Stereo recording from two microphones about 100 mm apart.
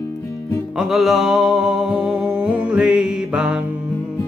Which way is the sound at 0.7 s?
5° right (ahead or behind).